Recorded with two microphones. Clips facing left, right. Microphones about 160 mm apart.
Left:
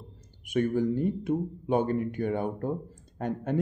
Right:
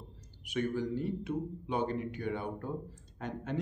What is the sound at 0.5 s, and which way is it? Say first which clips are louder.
Speech: left 7 dB; 50° left (ahead or behind).